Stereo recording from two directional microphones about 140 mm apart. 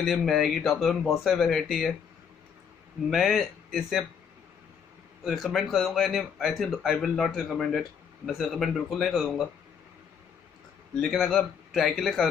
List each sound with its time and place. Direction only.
0.0 s speech: centre (ahead or behind)
3.1 s speech: centre (ahead or behind)
5.2 s speech: centre (ahead or behind)
11.0 s speech: centre (ahead or behind)